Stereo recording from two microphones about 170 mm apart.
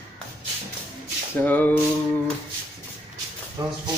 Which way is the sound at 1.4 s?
10° left (ahead or behind).